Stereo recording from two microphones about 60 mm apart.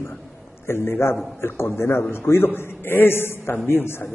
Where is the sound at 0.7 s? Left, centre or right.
Left.